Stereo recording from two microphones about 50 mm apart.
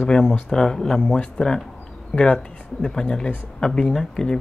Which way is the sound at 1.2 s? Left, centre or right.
Centre.